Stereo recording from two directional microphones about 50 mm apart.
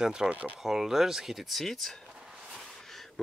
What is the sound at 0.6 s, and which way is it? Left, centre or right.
Speech, centre.